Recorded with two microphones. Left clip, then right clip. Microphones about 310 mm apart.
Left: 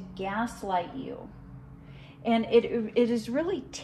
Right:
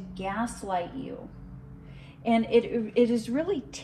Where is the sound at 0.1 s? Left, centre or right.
Left.